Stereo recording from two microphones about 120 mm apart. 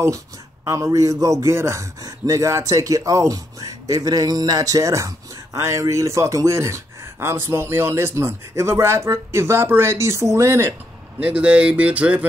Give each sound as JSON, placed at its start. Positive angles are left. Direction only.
{"t": 0.7, "sound": "a man's voice", "side_deg": -25}
{"t": 11.1, "sound": "speech", "side_deg": -10}